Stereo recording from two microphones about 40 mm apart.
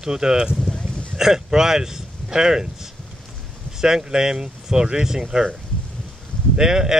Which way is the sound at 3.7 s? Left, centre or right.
Centre.